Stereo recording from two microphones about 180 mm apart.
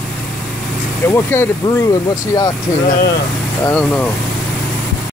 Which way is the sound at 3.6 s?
10° left (ahead or behind).